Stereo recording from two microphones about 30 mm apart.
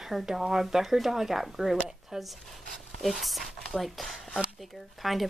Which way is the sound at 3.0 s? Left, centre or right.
Centre.